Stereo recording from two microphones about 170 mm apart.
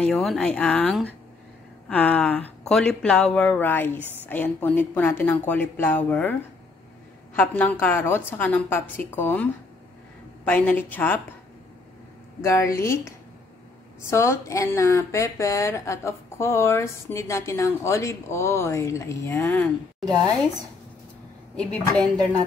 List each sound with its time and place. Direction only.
0.0 s a woman's voice: centre (ahead or behind)
7.3 s speech: 10° left (ahead or behind)
12.4 s speech: 15° left (ahead or behind)